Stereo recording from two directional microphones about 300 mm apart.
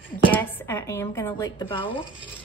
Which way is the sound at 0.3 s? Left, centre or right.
Centre.